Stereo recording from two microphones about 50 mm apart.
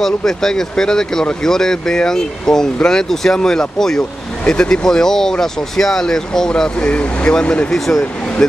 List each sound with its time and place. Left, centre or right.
0.0 s speech: centre
7.7 s speech: centre